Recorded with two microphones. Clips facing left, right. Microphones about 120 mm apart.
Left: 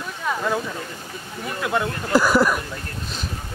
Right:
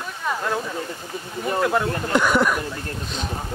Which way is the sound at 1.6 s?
5° left (ahead or behind).